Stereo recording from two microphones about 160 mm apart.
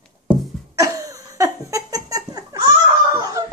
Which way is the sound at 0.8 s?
20° right (ahead or behind).